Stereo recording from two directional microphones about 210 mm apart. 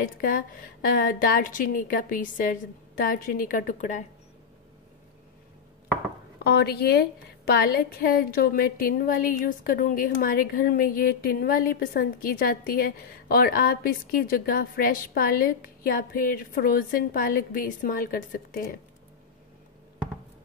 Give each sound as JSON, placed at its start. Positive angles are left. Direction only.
{"t": 0.0, "sound": "a woman's voice", "side_deg": 40}
{"t": 6.4, "sound": "a woman's voice", "side_deg": 50}